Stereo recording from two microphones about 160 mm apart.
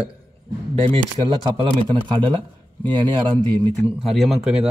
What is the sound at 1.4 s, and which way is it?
Speech, 30° right (ahead or behind).